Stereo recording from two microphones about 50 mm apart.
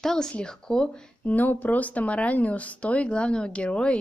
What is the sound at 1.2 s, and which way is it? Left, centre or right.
Speech, left.